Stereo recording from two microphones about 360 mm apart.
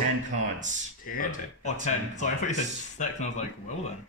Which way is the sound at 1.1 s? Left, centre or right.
Left.